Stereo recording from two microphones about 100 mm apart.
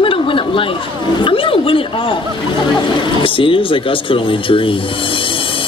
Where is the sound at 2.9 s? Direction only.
60° left (ahead or behind).